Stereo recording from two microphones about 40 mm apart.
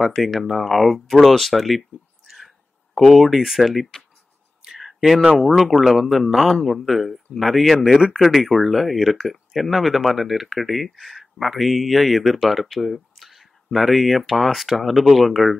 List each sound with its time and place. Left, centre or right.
0.0 s speech: centre
3.0 s speech: centre
4.6 s a sound: centre
5.3 s speech: centre